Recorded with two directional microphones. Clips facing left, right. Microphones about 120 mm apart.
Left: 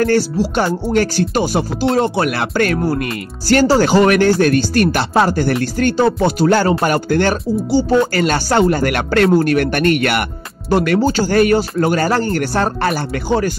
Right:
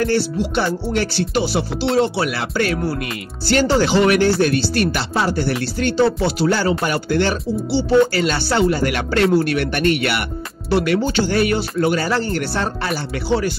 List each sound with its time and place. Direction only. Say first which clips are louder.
0.0 s music: left 4 dB; 45° left (ahead or behind)